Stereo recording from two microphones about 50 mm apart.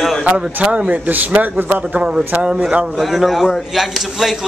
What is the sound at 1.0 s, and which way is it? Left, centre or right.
Speech, right.